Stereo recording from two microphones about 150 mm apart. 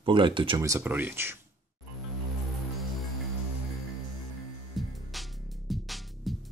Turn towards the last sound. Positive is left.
turn(degrees=0)  # may be behind; listen again after turning